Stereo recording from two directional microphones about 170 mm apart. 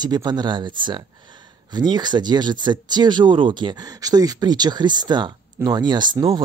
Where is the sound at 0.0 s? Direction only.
25° right (ahead or behind).